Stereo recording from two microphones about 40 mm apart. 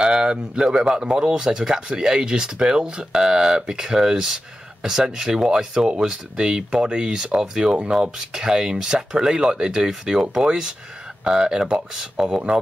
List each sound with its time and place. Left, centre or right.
0.0 s a man's voice: right